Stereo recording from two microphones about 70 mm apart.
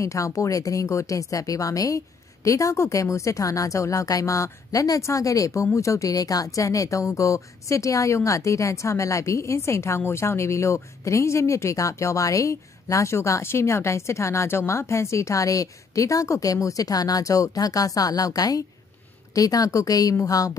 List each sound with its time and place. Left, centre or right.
0.0 s a woman's voice: left